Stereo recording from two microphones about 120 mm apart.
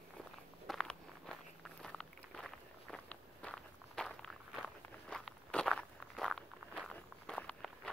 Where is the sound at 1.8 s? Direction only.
5° left (ahead or behind).